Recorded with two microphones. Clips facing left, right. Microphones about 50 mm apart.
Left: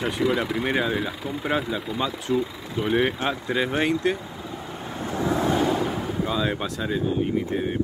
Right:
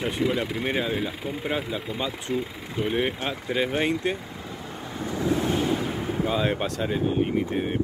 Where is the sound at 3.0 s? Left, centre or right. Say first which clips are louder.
Left 3 dB; centre.